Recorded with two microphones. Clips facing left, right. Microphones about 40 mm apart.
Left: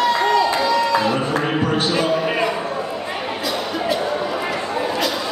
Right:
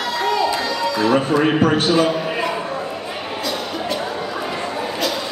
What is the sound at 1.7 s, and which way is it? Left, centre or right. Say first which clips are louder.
Speech: right 3 dB; right.